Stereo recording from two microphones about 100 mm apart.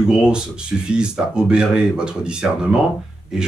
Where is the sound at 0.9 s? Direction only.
10° right (ahead or behind).